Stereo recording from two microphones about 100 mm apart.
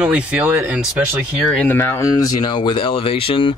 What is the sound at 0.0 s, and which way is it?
Speech, 10° right (ahead or behind).